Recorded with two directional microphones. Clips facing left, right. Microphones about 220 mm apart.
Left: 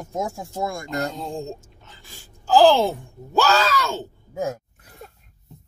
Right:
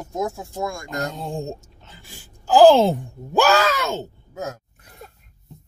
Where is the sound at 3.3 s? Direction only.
15° right (ahead or behind).